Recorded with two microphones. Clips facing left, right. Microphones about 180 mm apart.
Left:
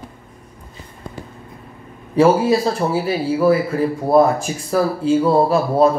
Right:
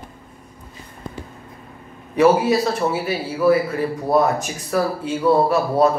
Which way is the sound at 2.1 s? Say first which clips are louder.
Left 1 dB; 30° left (ahead or behind).